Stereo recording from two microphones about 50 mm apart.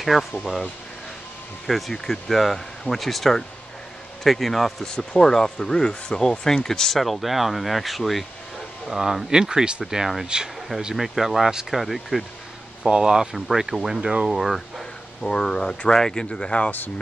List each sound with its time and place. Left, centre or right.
0.0 s speech: centre
1.7 s speech: centre
9.8 s speech: centre
10.2 s speech: centre
11.0 s speech: centre
12.8 s speech: centre
15.2 s speech: centre